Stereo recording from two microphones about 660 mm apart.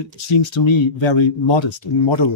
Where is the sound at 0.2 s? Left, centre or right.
Left.